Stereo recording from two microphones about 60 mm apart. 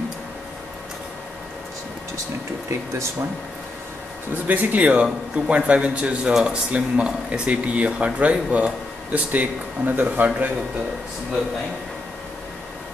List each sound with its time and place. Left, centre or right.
4.5 s speech: right